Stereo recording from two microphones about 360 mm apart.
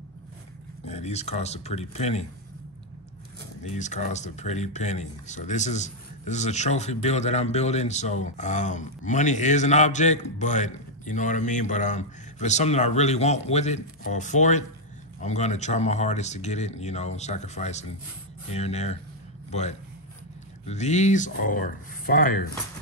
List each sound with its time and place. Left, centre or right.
0.8 s speech: centre
3.6 s speech: centre
20.6 s speech: centre